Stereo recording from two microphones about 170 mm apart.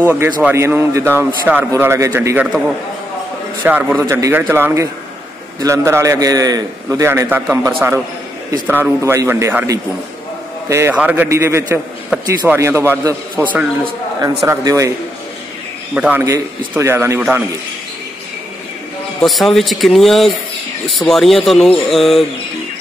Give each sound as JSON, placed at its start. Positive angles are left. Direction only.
{"t": 0.0, "sound": "a man's voice", "side_deg": -10}
{"t": 15.9, "sound": "a man's voice", "side_deg": -10}
{"t": 19.2, "sound": "speech", "side_deg": 0}